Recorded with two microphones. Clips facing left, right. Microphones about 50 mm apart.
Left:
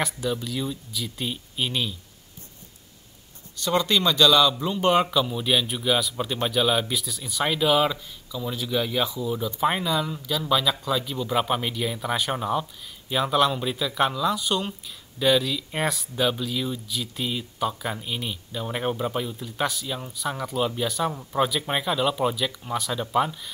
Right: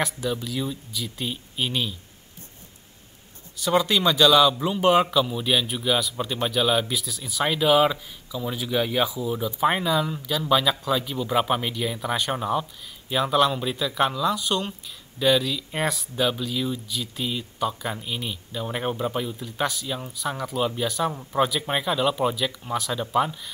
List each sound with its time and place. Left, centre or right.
0.0 s speech: centre
3.5 s speech: centre